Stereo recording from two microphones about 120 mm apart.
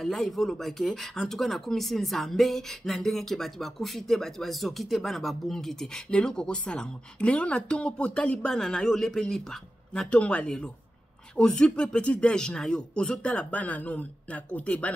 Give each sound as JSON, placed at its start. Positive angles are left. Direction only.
{"t": 0.0, "sound": "speech", "side_deg": 0}